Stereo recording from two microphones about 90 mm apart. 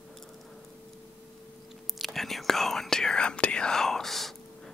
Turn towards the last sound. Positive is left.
turn(degrees=0)  # may be behind; listen again after turning